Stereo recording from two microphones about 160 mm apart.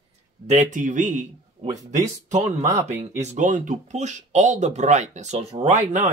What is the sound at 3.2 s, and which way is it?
Speech, 50° right (ahead or behind).